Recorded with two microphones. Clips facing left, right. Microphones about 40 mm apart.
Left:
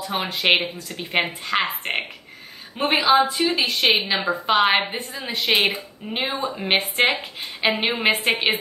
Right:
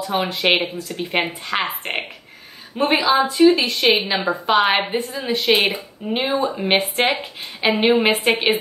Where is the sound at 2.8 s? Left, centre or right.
Centre.